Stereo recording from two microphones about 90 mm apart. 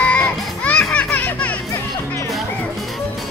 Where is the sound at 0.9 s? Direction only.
15° left (ahead or behind).